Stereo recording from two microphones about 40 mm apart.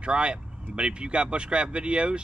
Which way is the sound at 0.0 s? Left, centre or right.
Right.